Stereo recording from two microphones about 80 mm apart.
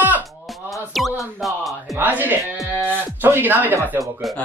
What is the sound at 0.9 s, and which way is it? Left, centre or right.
Speech, centre.